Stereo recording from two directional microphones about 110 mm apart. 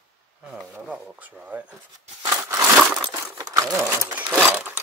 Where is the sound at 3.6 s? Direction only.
10° right (ahead or behind).